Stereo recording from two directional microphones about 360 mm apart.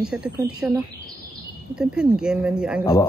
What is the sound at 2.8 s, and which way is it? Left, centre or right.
Speech, centre.